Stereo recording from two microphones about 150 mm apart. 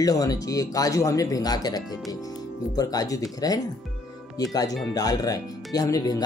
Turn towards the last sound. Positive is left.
turn(degrees=25)  # may be behind; listen again after turning